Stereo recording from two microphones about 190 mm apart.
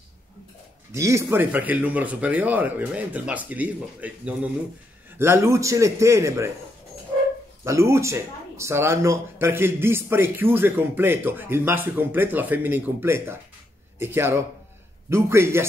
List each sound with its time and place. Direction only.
0.9 s speech: 15° right (ahead or behind)
7.6 s speech: 15° right (ahead or behind)